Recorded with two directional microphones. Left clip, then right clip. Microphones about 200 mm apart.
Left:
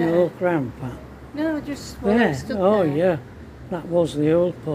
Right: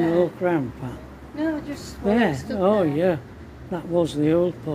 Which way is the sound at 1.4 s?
55° left (ahead or behind).